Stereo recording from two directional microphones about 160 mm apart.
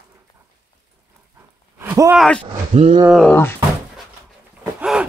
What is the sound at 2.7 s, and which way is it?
Roaring cats, 45° right (ahead or behind).